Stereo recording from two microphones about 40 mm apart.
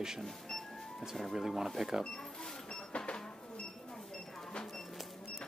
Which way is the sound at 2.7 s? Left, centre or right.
Left.